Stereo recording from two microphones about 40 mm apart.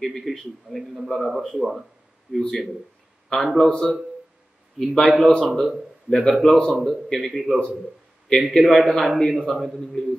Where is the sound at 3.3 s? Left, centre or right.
Centre.